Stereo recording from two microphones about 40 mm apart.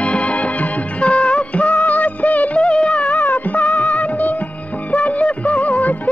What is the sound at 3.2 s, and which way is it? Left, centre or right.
Music of bollywood, left.